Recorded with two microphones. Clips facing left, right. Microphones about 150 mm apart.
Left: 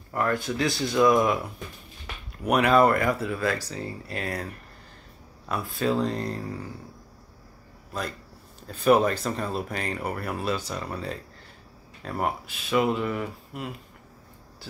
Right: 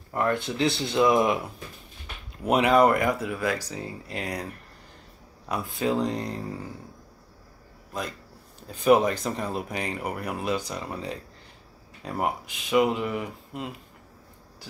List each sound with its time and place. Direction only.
0.1 s speech: 25° right (ahead or behind)
2.4 s speech: 20° right (ahead or behind)
5.5 s speech: 20° right (ahead or behind)
8.6 s speech: 15° right (ahead or behind)